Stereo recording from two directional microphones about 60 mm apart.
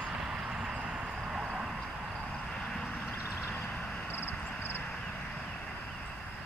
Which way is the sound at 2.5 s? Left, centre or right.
Centre.